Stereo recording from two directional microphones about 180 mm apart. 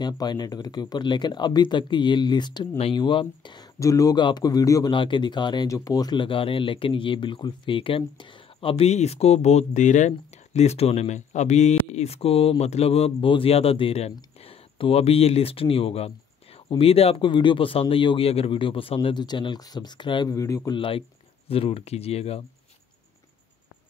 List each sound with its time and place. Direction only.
0.0 s speech: 25° left (ahead or behind)